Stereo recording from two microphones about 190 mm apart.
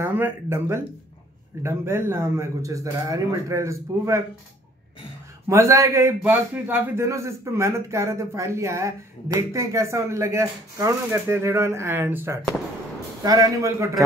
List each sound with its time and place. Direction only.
0.0 s a man's voice: 10° right (ahead or behind)
5.5 s a man's voice: 15° right (ahead or behind)